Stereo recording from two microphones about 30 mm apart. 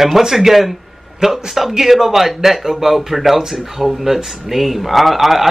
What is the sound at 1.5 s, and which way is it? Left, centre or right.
Speech, centre.